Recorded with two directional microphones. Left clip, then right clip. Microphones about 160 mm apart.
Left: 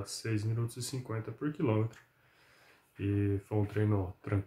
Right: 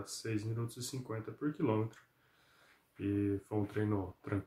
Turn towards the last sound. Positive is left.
turn(degrees=5)  # may be behind; listen again after turning